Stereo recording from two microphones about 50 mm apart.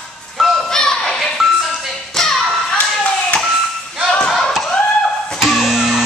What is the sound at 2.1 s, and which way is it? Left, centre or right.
Music, centre.